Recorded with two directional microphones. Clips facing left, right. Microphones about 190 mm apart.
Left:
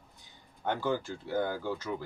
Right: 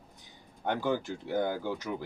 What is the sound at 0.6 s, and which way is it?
Speech, 15° right (ahead or behind).